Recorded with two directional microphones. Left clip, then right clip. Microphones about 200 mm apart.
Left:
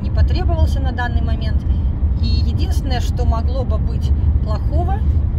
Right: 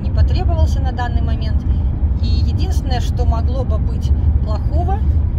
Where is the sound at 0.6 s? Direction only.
25° left (ahead or behind).